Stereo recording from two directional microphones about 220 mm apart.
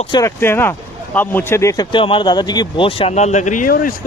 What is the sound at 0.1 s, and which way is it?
Speech, 10° left (ahead or behind).